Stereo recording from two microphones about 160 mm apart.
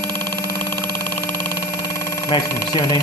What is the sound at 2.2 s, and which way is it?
Speech, 30° left (ahead or behind).